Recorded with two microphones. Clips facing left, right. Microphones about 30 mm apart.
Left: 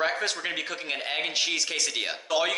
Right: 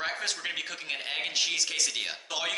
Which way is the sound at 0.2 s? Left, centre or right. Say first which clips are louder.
Left 3 dB; centre.